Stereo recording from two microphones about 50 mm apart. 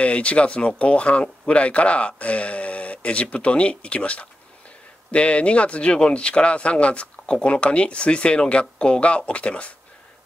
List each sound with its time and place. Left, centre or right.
0.0 s speech: left